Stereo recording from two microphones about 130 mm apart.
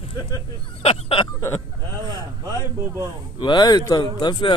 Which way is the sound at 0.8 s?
50° left (ahead or behind).